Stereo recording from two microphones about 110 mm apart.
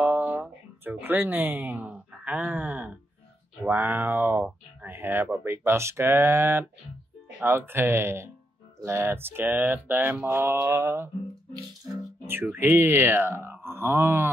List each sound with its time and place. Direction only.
0.0 s speech: 15° right (ahead or behind)
12.3 s speech: 20° right (ahead or behind)